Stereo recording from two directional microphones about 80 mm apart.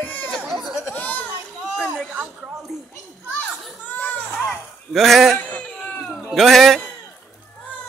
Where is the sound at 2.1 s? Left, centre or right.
Centre.